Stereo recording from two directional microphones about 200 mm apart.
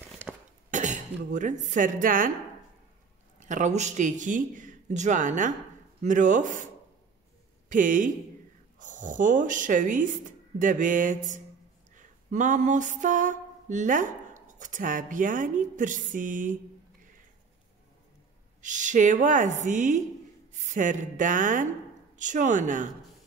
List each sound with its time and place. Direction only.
0.3 s cough: 5° right (ahead or behind)
0.7 s speech: 40° right (ahead or behind)
3.4 s speech: 40° right (ahead or behind)
7.7 s speech: 40° right (ahead or behind)
11.9 s a sound: 40° right (ahead or behind)
18.6 s speech: 40° right (ahead or behind)